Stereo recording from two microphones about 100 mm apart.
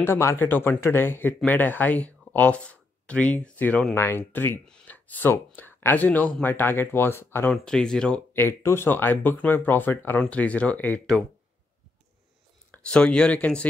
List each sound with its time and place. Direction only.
0.0 s speech: 25° left (ahead or behind)
4.6 s a sound: 10° left (ahead or behind)
5.3 s speech: 20° left (ahead or behind)
7.5 s speech: 5° left (ahead or behind)
8.3 s speech: 25° left (ahead or behind)
12.7 s speech: 10° left (ahead or behind)